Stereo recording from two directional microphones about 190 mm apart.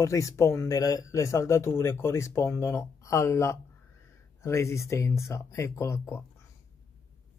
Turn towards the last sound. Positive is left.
turn(degrees=15)  # may be behind; listen again after turning